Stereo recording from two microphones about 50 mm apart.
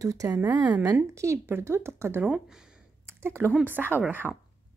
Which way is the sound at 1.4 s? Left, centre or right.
Right.